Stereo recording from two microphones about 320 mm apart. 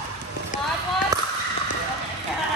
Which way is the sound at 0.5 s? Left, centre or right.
Left.